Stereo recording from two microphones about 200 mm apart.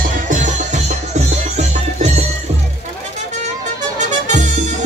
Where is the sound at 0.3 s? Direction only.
40° right (ahead or behind).